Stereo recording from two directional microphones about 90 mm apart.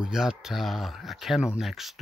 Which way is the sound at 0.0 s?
5° right (ahead or behind).